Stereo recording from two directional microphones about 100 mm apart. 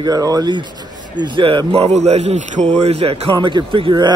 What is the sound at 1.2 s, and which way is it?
A man's voice, 55° right (ahead or behind).